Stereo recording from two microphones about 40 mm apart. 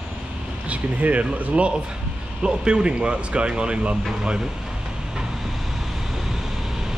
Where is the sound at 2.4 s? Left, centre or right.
Right.